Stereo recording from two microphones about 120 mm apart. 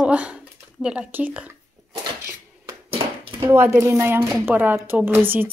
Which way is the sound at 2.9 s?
50° right (ahead or behind).